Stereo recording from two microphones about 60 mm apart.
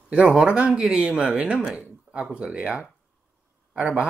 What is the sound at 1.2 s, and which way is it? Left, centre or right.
Speech, right.